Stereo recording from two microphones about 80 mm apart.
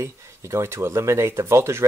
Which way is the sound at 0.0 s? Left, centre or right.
Right.